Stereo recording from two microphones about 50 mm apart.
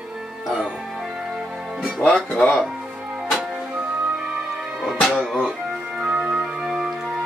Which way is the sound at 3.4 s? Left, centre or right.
Centre.